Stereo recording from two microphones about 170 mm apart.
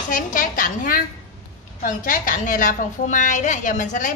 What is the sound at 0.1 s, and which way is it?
A woman's voice, 50° left (ahead or behind).